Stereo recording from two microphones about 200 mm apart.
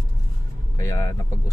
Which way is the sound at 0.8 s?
15° left (ahead or behind).